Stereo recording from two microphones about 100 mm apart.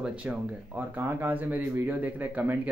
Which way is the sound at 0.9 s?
20° right (ahead or behind).